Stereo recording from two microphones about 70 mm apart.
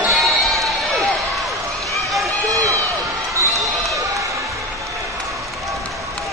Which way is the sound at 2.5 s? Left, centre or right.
Right.